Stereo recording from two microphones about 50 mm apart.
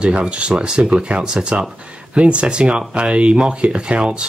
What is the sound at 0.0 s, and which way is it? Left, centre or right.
Speech, right.